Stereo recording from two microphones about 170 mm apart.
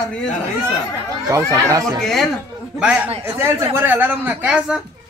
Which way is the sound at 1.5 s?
20° right (ahead or behind).